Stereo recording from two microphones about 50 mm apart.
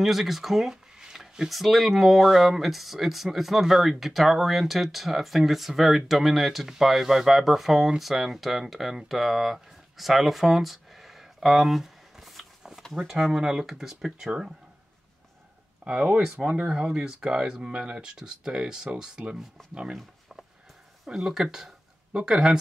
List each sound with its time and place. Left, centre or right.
0.0 s speech: centre
15.8 s speech: right
21.1 s speech: centre